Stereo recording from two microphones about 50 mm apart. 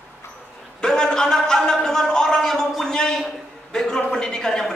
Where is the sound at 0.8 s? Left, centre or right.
Centre.